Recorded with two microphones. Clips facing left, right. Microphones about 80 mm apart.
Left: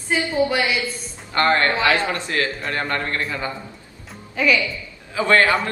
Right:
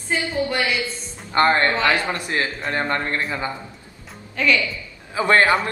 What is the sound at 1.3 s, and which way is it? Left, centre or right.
A man's voice, right.